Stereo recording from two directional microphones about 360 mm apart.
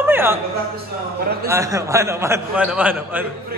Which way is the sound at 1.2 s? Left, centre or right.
Right.